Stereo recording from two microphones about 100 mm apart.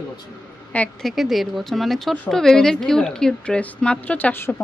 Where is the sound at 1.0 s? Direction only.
Centre (ahead or behind).